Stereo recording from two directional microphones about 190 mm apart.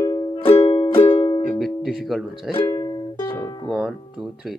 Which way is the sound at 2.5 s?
25° left (ahead or behind).